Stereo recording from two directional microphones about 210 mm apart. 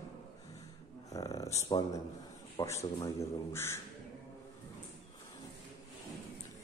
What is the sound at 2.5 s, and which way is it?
Speech, 15° left (ahead or behind).